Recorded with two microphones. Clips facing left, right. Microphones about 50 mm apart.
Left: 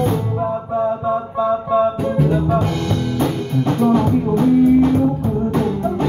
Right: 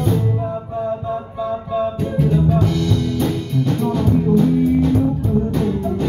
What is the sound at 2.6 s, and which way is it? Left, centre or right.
Music, left.